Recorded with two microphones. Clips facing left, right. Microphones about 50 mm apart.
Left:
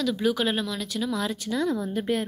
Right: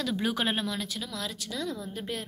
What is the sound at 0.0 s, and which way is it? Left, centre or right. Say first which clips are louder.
A woman's voice: left 5 dB; right.